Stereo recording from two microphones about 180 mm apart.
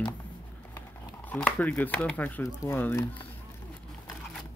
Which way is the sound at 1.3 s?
5° left (ahead or behind).